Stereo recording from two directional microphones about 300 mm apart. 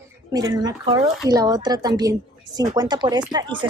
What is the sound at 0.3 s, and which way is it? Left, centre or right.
A woman's voice, centre.